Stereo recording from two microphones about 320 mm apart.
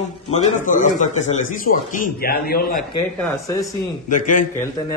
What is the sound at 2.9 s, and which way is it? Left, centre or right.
Speech, centre.